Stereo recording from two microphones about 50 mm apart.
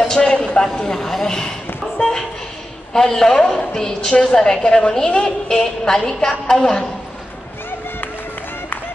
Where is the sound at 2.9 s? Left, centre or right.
Centre.